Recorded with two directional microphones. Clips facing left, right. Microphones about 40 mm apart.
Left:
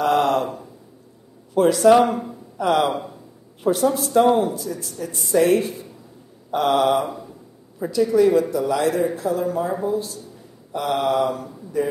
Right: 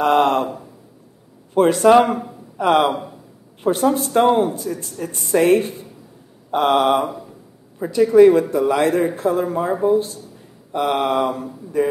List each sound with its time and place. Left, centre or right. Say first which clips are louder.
0.0 s a sound: right 3 dB; right
1.5 s speech: right 2 dB; right
3.9 s speech: right 1 dB; right